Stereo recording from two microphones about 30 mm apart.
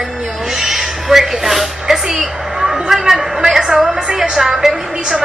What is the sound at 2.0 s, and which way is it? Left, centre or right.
A woman's voice, centre.